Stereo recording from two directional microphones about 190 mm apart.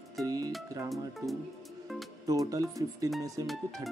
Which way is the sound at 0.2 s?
20° right (ahead or behind).